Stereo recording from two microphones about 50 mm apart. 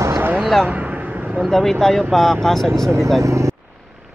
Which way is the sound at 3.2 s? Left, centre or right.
Right.